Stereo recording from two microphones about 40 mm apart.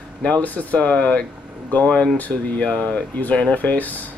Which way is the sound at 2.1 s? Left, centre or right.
Left.